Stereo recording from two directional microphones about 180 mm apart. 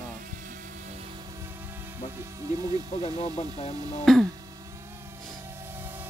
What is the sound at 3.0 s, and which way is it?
Speech, 35° left (ahead or behind).